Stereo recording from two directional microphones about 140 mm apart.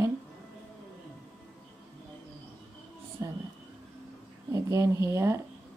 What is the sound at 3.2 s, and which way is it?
Speech, 25° right (ahead or behind).